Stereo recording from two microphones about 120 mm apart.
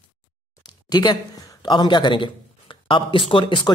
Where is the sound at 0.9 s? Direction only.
35° left (ahead or behind).